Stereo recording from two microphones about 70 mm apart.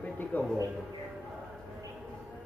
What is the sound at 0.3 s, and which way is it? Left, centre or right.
Speech, left.